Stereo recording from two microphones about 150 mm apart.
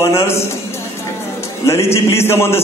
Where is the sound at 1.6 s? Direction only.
20° left (ahead or behind).